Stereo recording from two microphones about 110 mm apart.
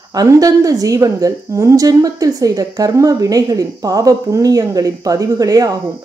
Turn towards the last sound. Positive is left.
turn(degrees=-35)  # may be behind; listen again after turning